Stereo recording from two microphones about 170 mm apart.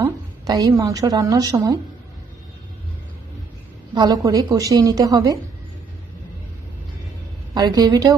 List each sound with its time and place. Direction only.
0.0 s a woman's voice: 20° right (ahead or behind)
3.9 s a woman's voice: 25° right (ahead or behind)
7.5 s a woman's voice: 25° right (ahead or behind)